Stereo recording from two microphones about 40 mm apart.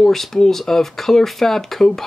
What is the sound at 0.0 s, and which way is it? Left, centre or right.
Speech, centre.